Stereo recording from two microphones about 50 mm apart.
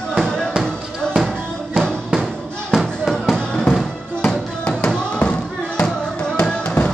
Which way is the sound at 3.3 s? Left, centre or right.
Centre.